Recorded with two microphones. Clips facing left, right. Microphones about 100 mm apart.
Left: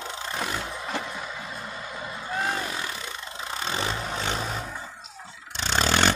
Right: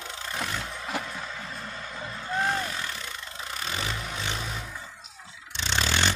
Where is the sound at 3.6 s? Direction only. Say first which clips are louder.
Left 4 dB; 30° left (ahead or behind); by 6.1 s 45° left (ahead or behind).